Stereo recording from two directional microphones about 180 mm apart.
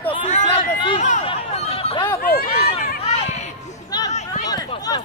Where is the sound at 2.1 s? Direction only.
60° left (ahead or behind).